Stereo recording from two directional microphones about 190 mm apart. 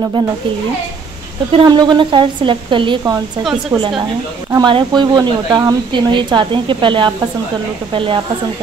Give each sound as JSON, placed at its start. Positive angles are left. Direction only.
{"t": 1.5, "sound": "speech", "side_deg": -25}
{"t": 3.7, "sound": "a woman's voice", "side_deg": -15}